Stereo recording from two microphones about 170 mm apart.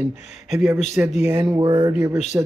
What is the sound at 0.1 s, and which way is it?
Speech, 40° left (ahead or behind).